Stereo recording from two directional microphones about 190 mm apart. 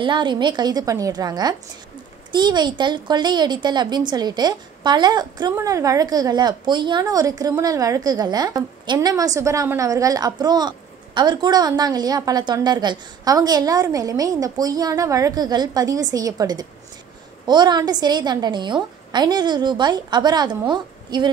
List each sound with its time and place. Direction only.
0.0 s speech: 25° right (ahead or behind)